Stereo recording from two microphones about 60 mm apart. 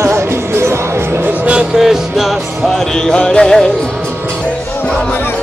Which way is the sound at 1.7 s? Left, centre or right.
Centre.